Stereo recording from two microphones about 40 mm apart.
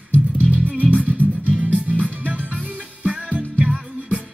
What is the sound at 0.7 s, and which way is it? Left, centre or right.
Music, right.